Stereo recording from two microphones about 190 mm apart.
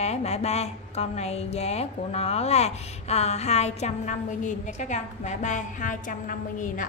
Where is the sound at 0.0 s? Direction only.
35° left (ahead or behind).